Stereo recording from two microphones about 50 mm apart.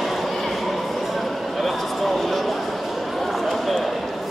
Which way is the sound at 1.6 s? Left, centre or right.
Centre.